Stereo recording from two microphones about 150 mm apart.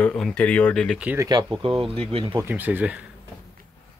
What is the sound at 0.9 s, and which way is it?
Speech, 10° right (ahead or behind).